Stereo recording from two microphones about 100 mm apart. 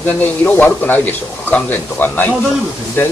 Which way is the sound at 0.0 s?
15° left (ahead or behind).